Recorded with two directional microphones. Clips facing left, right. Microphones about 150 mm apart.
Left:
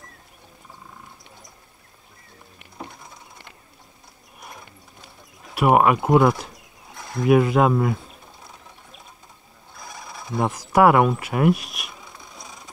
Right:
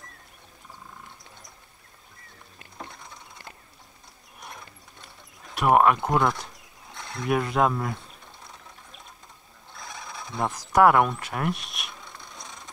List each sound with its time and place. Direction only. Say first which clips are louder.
4.4 s clip-clop: left 1 dB; centre (ahead or behind)
5.7 s speech: left 3 dB; 5° left (ahead or behind)
9.8 s a sound: left 1 dB; centre (ahead or behind)